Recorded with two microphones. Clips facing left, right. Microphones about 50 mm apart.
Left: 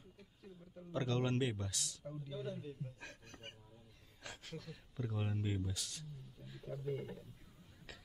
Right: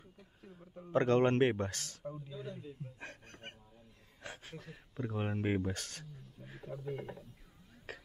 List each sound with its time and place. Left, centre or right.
0.4 s a sound: right
0.7 s a man's voice: right
2.1 s speech: right
2.8 s a sound: right
4.2 s speech: right
6.7 s speech: right
7.9 s music: right